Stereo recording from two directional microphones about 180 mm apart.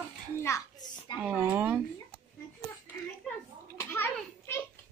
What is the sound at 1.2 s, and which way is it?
Speech, 10° right (ahead or behind).